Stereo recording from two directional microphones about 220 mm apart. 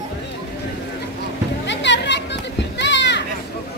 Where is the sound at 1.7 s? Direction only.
55° left (ahead or behind).